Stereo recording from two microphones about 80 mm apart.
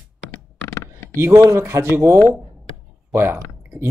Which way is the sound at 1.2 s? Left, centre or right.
Right.